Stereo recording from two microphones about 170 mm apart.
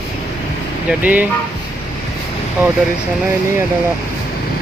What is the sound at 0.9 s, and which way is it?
Speech, 10° right (ahead or behind).